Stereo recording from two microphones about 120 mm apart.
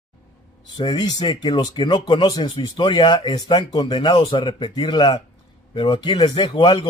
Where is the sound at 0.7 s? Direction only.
35° left (ahead or behind).